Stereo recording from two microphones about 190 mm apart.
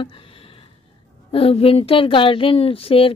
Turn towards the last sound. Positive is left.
turn(degrees=30)  # may be behind; listen again after turning